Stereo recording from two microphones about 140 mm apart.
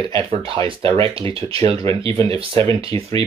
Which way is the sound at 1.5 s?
45° right (ahead or behind).